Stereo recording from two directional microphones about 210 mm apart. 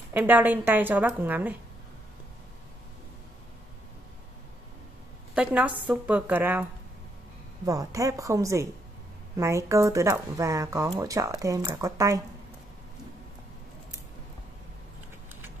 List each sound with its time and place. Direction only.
0.1 s speech: 10° right (ahead or behind)
5.3 s a woman's voice: 5° right (ahead or behind)